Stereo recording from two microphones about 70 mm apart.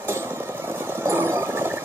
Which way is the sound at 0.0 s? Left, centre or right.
Right.